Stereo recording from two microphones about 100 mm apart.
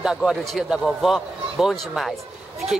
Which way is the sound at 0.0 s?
5° right (ahead or behind).